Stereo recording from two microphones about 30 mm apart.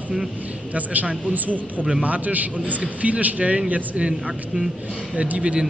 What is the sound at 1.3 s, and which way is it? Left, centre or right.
Speech, right.